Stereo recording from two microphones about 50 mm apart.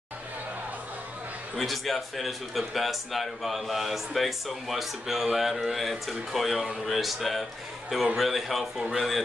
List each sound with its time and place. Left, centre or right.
1.6 s a man's voice: centre